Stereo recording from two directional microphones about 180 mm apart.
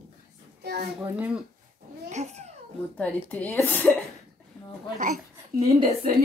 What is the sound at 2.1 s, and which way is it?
Babbling, 40° right (ahead or behind).